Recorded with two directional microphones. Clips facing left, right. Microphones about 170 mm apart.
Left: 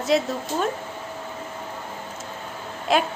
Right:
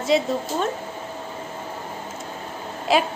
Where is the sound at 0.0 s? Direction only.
Centre (ahead or behind).